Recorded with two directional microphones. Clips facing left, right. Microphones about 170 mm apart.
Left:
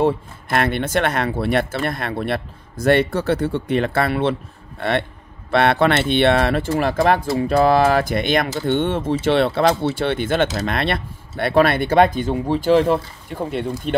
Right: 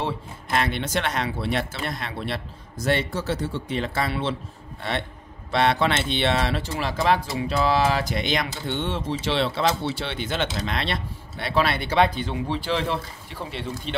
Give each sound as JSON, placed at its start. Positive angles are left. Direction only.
{"t": 0.0, "sound": "speech", "side_deg": 55}